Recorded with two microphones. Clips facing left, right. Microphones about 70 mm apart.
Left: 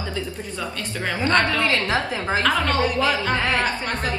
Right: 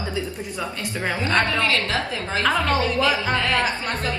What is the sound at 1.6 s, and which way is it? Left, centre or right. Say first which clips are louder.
A woman's voice: left 1 dB; left.